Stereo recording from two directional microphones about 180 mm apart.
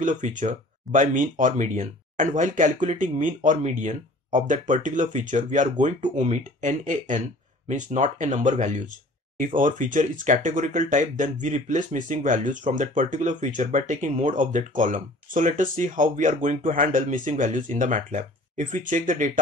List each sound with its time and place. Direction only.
0.0 s speech: 45° right (ahead or behind)